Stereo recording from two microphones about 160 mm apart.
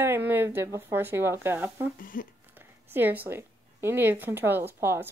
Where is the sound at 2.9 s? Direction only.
15° right (ahead or behind).